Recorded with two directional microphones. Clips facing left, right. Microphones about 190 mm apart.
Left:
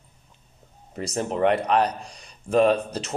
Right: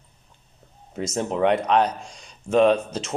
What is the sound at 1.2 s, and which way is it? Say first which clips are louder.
Speech: right 1 dB; centre (ahead or behind).